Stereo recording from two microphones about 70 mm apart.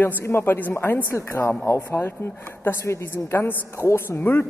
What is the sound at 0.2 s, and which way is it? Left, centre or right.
Speech, left.